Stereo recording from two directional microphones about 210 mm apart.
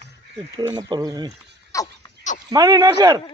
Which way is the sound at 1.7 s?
15° left (ahead or behind).